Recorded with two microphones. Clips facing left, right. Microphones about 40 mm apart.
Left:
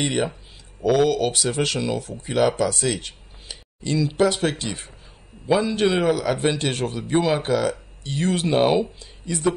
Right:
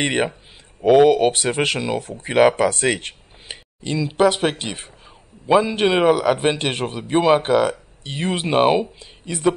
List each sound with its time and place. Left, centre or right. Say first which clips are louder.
0.0 s a man's voice: right 3 dB; right
2.1 s a man's voice: right 6 dB; right
7.2 s speech: right 5 dB; right
8.5 s speech: right 3 dB; right
9.0 s speech: right 2 dB; right